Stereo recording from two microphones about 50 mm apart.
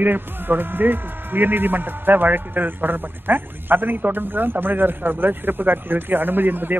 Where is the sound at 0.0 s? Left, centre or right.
Right.